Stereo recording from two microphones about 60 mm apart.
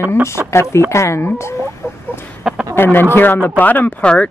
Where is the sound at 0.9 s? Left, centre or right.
Left.